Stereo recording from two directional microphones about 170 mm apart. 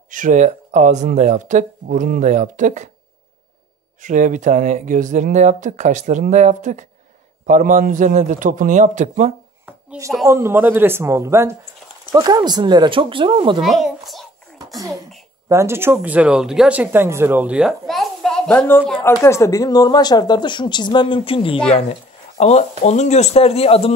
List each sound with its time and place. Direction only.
0.1 s speech: 50° right (ahead or behind)
4.0 s speech: 45° right (ahead or behind)
9.7 s a sound: 15° right (ahead or behind)
10.2 s speech: 15° right (ahead or behind)
13.6 s a sound: centre (ahead or behind)
15.4 s speech: 15° right (ahead or behind); by 23.9 s 35° left (ahead or behind)